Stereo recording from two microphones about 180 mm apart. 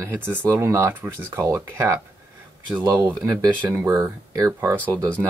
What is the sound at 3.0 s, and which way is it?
Speech, 20° right (ahead or behind).